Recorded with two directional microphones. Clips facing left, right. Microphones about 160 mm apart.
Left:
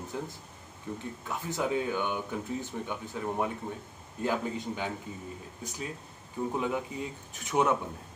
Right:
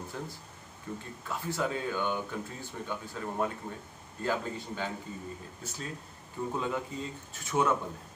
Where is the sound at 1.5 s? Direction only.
15° left (ahead or behind).